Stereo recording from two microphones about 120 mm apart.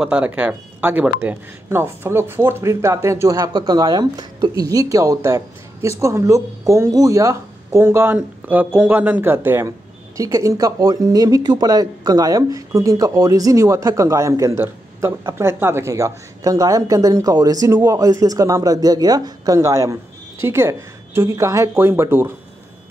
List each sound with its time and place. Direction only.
0.0 s speech: 10° right (ahead or behind)